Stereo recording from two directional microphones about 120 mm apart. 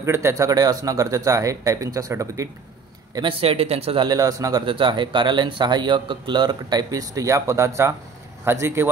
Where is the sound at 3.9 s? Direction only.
35° right (ahead or behind).